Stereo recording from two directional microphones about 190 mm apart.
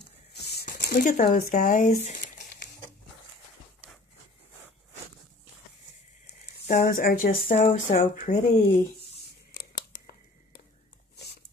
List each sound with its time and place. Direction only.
0.3 s speech: 60° left (ahead or behind); by 2.0 s 40° left (ahead or behind)
2.0 s crumpling: 40° left (ahead or behind)
6.7 s speech: 50° left (ahead or behind)